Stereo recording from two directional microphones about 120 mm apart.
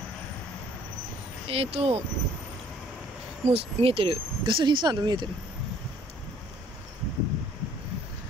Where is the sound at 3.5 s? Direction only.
50° right (ahead or behind).